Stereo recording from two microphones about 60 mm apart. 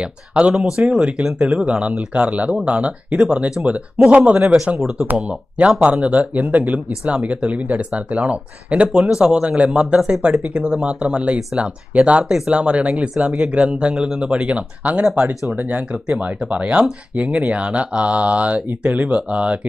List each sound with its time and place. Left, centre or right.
0.0 s speech: centre
4.7 s speech: centre